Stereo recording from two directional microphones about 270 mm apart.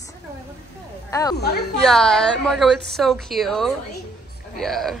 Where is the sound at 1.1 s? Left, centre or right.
Centre.